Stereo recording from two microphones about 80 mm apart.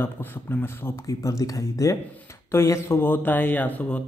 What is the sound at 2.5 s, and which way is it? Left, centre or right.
A man's voice, left.